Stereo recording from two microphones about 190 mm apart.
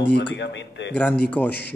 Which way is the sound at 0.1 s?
65° left (ahead or behind).